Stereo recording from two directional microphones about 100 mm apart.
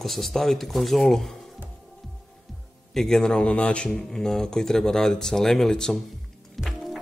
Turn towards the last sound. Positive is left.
turn(degrees=0)  # may be behind; listen again after turning